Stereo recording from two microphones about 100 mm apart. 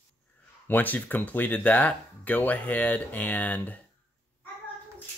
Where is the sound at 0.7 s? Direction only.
15° left (ahead or behind).